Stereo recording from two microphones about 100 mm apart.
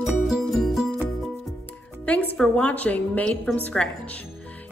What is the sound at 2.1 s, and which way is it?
A woman's voice, 15° left (ahead or behind).